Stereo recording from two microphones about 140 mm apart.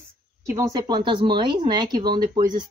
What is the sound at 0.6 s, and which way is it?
Speech, 25° right (ahead or behind).